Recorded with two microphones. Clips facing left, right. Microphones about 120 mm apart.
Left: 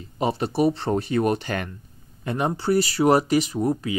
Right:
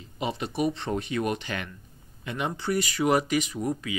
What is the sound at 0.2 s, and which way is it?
Speech, 40° left (ahead or behind).